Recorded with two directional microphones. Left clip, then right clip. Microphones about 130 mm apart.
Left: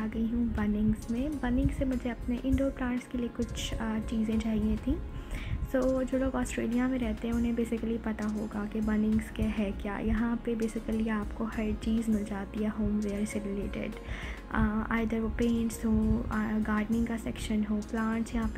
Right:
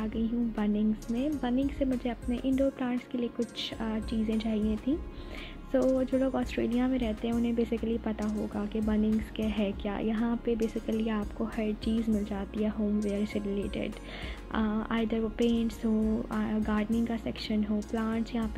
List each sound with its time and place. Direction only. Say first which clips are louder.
0.0 s speech: even; 25° right (ahead or behind)
5.9 s speech: right 2 dB; 25° right (ahead or behind)